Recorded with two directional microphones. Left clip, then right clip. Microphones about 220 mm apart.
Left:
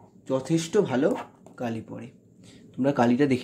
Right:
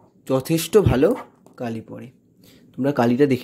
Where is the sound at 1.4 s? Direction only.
20° right (ahead or behind).